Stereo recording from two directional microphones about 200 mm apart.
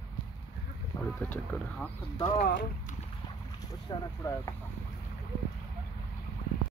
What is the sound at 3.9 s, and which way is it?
Speech, 20° left (ahead or behind).